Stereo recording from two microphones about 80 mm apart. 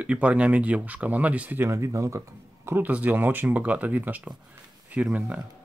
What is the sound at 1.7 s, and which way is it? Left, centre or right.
Speech, right.